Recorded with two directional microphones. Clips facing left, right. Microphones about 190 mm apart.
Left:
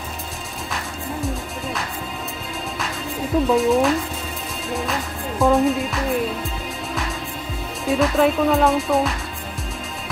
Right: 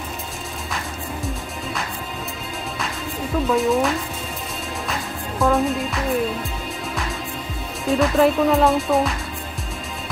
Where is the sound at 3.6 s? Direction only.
Centre (ahead or behind).